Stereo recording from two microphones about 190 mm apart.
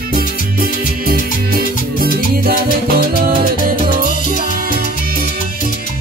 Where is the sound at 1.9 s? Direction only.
50° right (ahead or behind).